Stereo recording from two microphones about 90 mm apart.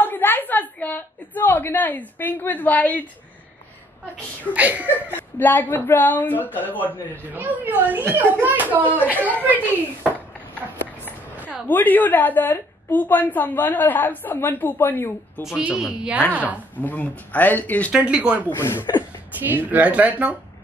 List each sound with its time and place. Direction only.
0.0 s a sound: 20° left (ahead or behind)
4.6 s speech: 15° right (ahead or behind)
5.1 s a woman's voice: 20° left (ahead or behind)
7.3 s speech: 20° right (ahead or behind)
11.3 s a sound: 15° right (ahead or behind)
11.6 s a woman's voice: 20° left (ahead or behind)
15.4 s speech: 10° right (ahead or behind)
16.8 s speech: 15° left (ahead or behind)
17.9 s speech: 10° right (ahead or behind)
18.5 s a woman's voice: 25° left (ahead or behind)
19.3 s speech: 20° right (ahead or behind)